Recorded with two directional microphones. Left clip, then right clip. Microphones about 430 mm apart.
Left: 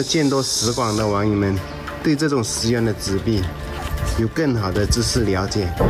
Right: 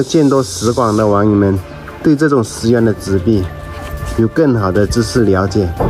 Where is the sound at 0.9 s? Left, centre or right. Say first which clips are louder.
Right 8 dB; right.